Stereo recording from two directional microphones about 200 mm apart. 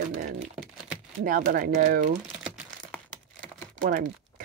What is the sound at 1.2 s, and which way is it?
Speech, 45° right (ahead or behind).